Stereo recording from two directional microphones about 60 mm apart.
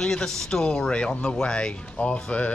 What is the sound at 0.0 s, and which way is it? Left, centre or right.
Speech, centre.